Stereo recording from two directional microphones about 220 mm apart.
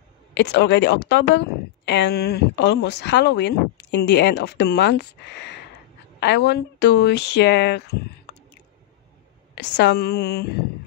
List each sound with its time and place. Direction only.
0.3 s a woman's voice: 50° left (ahead or behind)
9.6 s a woman's voice: 50° left (ahead or behind)